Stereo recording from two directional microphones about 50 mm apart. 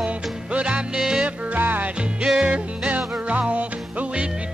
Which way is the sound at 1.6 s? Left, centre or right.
Right.